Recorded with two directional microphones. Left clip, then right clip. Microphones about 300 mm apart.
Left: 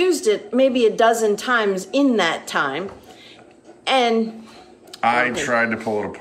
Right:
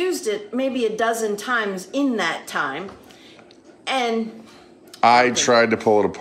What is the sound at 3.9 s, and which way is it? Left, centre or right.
Speech, centre.